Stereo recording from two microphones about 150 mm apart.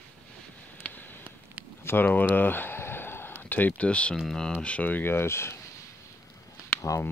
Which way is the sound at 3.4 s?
10° left (ahead or behind).